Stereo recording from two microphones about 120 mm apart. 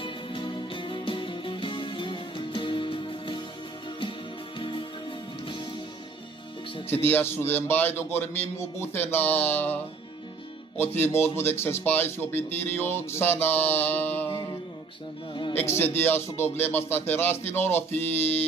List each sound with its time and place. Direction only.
0.0 s music: 45° left (ahead or behind)
4.6 s music: 45° left (ahead or behind)
6.9 s speech: 20° left (ahead or behind)
10.8 s speech: 20° left (ahead or behind)
15.5 s speech: 20° left (ahead or behind)